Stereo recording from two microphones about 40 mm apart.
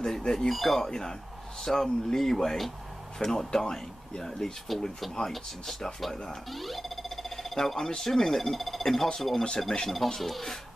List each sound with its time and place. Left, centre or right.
0.0 s squawk: centre
0.5 s speech: centre
0.8 s speech: centre
3.6 s speech: left
4.2 s speech: centre